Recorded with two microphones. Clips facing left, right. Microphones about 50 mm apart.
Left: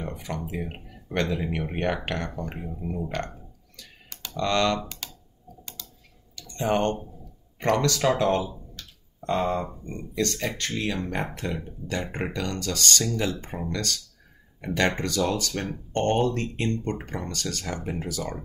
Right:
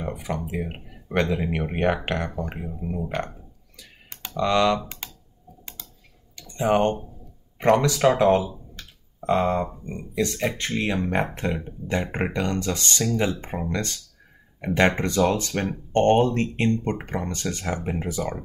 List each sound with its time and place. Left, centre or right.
0.0 s music: centre
0.5 s speech: centre
4.1 s computer keyboard: right
4.4 s speech: centre
6.3 s speech: centre
8.8 s clicking: right
9.2 s speech: centre